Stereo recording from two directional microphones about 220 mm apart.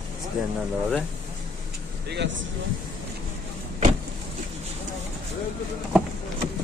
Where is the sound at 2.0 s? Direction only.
55° right (ahead or behind).